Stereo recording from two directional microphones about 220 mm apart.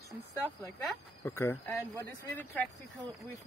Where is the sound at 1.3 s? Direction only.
10° left (ahead or behind).